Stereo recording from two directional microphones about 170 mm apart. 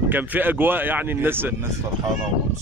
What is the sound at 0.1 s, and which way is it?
Speech, 10° right (ahead or behind).